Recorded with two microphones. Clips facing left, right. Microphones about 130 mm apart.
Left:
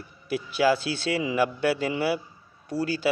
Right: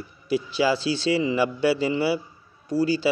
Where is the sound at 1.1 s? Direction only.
Centre (ahead or behind).